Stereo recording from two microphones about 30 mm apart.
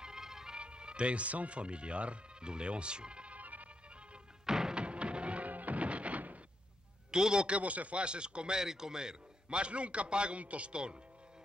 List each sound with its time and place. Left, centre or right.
0.0 s music: centre
0.6 s speech: right
3.3 s music: right
4.5 s music: centre
4.7 s music: right
5.5 s music: right
5.8 s music: right
7.1 s speech: right
7.4 s speech: right
8.0 s a man's voice: right
8.5 s a man's voice: right
9.6 s a man's voice: right
10.4 s speech: right
10.7 s a man's voice: right